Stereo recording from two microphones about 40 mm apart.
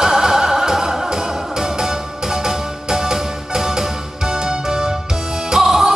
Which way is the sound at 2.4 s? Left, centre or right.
Centre.